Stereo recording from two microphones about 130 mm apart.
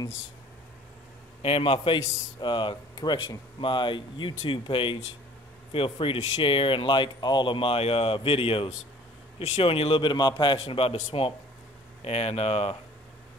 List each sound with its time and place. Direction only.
1.4 s speech: 45° left (ahead or behind)